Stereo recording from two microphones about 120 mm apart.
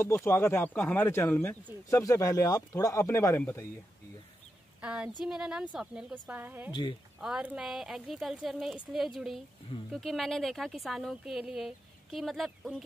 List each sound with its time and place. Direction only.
0.0 s speech: 20° left (ahead or behind)
4.8 s a woman's voice: 10° right (ahead or behind)
6.7 s speech: 40° left (ahead or behind)
7.2 s speech: 5° right (ahead or behind)